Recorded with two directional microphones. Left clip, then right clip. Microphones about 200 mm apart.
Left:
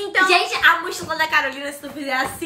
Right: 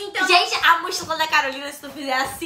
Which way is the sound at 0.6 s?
20° right (ahead or behind).